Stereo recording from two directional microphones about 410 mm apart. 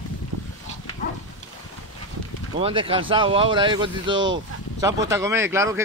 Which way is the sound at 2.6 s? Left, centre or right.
Centre.